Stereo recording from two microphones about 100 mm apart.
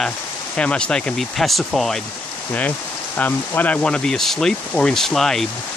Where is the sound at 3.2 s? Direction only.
15° left (ahead or behind).